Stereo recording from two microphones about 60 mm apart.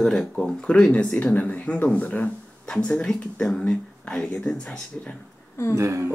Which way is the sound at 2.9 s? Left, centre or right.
Centre.